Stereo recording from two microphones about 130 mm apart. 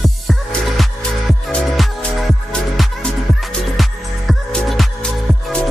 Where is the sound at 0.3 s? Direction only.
Centre (ahead or behind).